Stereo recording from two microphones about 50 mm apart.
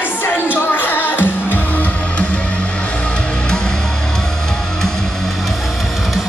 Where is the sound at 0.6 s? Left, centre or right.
Left.